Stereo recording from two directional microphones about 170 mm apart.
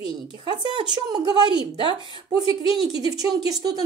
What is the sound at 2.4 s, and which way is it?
Speech, 30° left (ahead or behind).